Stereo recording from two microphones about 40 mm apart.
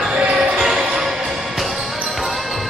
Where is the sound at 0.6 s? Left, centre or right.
Centre.